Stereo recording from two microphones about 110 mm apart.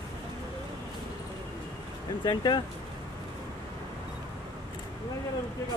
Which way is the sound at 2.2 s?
40° left (ahead or behind).